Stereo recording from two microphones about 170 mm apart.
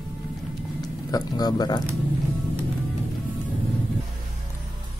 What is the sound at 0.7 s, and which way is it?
Speech, 25° left (ahead or behind).